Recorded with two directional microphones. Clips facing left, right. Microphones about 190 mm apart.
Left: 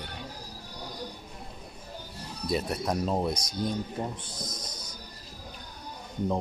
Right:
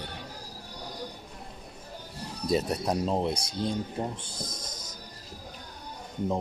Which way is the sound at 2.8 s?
25° right (ahead or behind).